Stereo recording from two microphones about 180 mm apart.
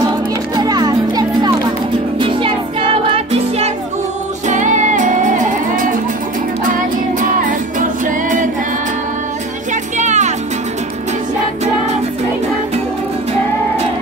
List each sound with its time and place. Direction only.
0.6 s music: 20° right (ahead or behind); by 5.9 s 45° right (ahead or behind)
8.0 s music: 45° right (ahead or behind)
9.9 s music: 40° right (ahead or behind)